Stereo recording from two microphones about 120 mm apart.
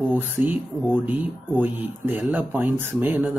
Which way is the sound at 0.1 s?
15° right (ahead or behind).